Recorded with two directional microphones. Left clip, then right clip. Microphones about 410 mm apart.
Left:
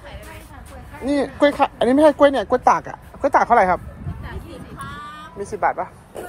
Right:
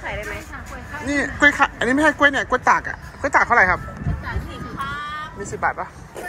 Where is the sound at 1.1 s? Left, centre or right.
Centre.